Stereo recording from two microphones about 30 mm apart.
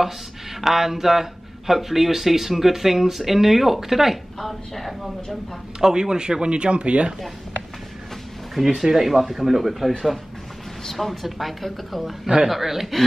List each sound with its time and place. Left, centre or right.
0.6 s speech: centre
4.4 s speech: centre
5.8 s speech: right
8.5 s speech: centre